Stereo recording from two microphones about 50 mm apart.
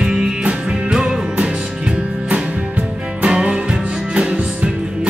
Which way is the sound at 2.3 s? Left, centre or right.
Right.